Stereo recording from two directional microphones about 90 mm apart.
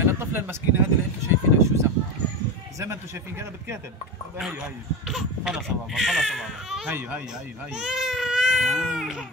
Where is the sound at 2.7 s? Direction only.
30° right (ahead or behind).